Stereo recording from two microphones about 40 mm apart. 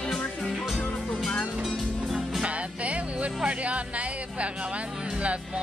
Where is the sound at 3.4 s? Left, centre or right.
Right.